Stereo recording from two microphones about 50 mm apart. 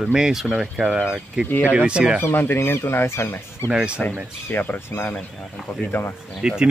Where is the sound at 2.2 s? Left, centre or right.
Left.